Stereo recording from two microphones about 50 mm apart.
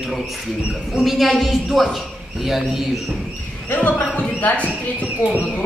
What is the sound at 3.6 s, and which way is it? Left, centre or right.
Speech, left.